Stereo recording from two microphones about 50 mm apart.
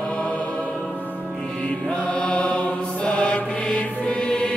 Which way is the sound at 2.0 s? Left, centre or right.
Centre.